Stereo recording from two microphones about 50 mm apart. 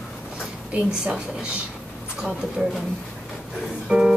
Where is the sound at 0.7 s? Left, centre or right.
Centre.